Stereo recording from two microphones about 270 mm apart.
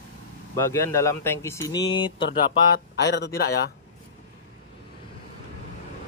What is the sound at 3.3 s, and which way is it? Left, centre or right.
Speech, left.